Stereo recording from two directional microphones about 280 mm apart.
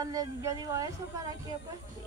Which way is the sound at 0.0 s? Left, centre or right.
Centre.